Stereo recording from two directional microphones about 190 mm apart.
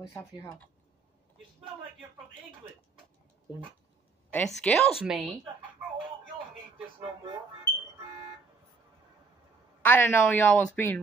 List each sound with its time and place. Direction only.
0.1 s a woman's voice: 15° left (ahead or behind)
4.3 s a woman's voice: 5° left (ahead or behind)
9.8 s a woman's voice: 10° left (ahead or behind)